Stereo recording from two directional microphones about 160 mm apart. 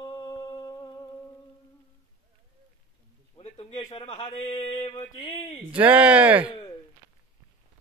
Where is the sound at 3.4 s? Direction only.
40° left (ahead or behind).